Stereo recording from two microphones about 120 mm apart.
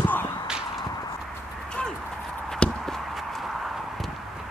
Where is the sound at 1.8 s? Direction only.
10° left (ahead or behind).